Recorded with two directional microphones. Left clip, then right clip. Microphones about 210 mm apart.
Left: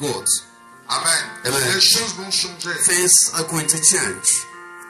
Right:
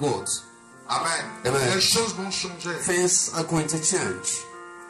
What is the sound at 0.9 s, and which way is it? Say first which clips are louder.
Speech: left 5 dB; 40° right (ahead or behind).